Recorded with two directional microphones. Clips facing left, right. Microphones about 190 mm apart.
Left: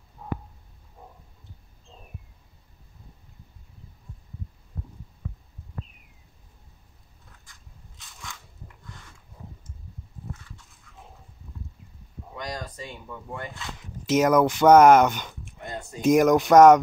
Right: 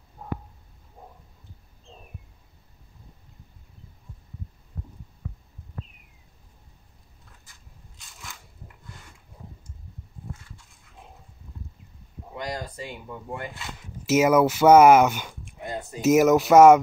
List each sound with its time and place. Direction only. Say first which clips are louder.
8.0 s crushing: left 2 dB; centre (ahead or behind)
12.4 s speech: right 2 dB; 10° right (ahead or behind)